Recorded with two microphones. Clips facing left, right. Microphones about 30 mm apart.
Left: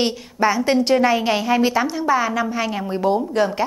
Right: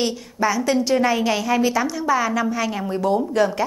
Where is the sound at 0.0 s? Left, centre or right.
Left.